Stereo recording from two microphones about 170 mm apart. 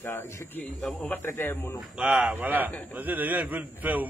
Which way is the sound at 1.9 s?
5° right (ahead or behind).